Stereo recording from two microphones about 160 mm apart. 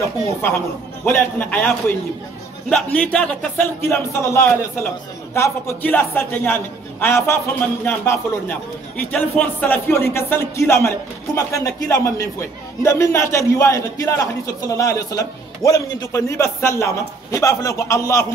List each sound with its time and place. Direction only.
0.0 s a man's voice: 15° left (ahead or behind)
2.7 s a man's voice: 10° left (ahead or behind)